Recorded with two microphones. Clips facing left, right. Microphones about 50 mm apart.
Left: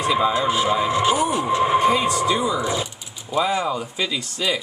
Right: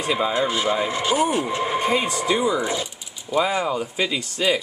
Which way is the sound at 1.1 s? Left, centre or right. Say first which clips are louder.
Left 1 dB; right.